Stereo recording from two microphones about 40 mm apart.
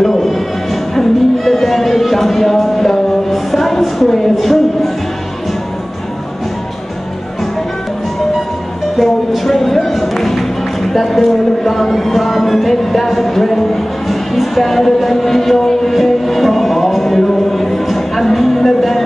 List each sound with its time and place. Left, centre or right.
0.0 s music: centre
8.9 s music: centre